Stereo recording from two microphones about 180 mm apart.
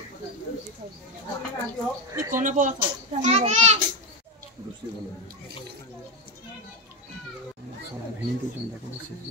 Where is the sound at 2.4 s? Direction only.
45° right (ahead or behind).